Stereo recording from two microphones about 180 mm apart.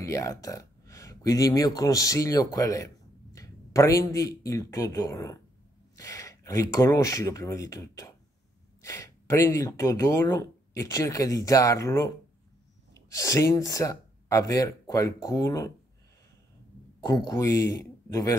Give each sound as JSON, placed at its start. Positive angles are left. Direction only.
{"t": 0.0, "sound": "speech", "side_deg": 15}
{"t": 17.0, "sound": "speech", "side_deg": 20}